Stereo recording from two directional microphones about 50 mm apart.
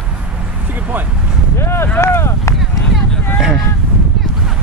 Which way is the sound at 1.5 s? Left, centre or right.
Left.